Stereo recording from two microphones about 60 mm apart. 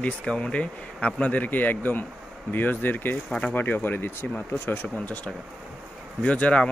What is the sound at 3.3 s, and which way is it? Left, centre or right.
Speech, centre.